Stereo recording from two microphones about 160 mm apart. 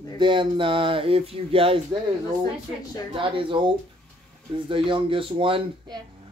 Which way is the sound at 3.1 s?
35° right (ahead or behind).